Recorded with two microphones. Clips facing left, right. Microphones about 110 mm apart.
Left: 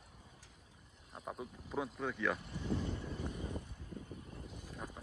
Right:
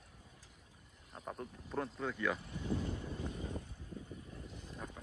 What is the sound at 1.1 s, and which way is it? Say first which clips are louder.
Speech: even; 5° left (ahead or behind).